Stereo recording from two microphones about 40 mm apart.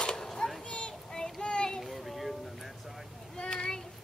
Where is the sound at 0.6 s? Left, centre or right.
Left.